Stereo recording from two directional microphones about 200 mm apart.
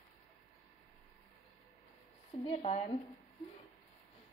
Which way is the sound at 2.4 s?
30° left (ahead or behind).